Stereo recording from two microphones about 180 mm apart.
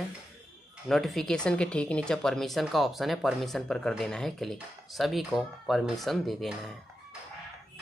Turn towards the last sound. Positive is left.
turn(degrees=0)  # may be behind; listen again after turning